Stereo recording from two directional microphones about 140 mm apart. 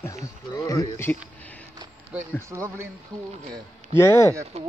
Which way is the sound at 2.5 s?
20° right (ahead or behind).